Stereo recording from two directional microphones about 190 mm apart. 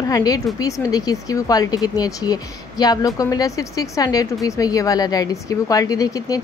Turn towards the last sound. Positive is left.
turn(degrees=20)  # may be behind; listen again after turning